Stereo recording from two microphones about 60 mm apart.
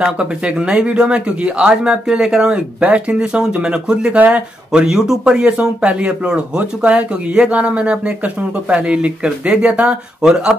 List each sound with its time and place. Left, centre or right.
0.2 s speech: centre
2.5 s speech: right